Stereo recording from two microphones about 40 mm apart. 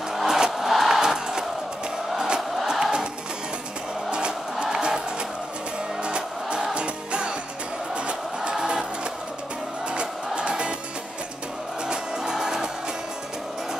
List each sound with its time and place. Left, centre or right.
0.1 s music: centre
2.1 s crowd: centre
4.1 s music: right
6.0 s music: right
9.9 s music: right
11.9 s music: centre